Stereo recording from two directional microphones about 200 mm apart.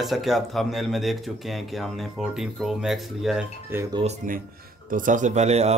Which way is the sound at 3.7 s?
15° right (ahead or behind).